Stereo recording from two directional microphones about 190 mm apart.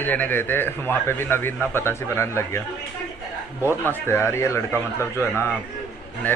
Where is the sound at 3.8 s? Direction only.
10° left (ahead or behind).